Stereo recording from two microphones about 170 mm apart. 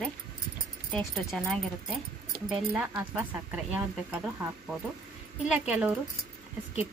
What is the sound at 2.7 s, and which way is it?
Speech, 5° right (ahead or behind).